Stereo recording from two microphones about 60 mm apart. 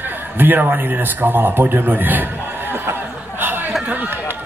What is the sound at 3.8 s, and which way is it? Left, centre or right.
Run, right.